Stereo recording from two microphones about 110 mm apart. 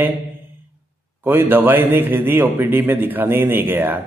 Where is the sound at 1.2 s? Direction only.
20° right (ahead or behind).